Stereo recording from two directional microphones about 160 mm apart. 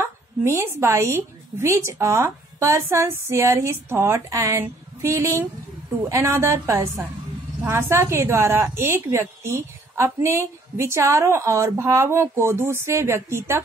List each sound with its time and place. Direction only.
0.0 s a woman's voice: 15° right (ahead or behind)